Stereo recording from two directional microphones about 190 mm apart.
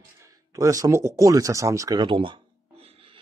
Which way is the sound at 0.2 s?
15° right (ahead or behind).